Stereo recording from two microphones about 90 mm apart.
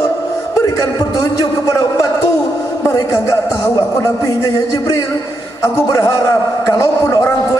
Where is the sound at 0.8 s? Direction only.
40° left (ahead or behind).